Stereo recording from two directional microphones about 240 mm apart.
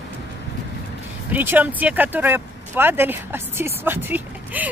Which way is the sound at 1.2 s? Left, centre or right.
Centre.